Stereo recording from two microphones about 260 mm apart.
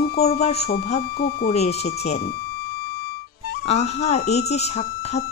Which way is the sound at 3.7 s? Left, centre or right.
Left.